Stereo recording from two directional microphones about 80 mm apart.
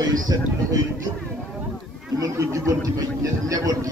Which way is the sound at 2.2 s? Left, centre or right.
Right.